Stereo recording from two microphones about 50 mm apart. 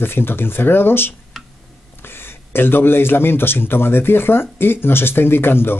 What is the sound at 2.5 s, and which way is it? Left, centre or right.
Speech, left.